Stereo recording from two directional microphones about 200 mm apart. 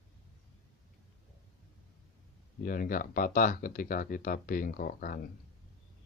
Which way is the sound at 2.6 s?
45° left (ahead or behind).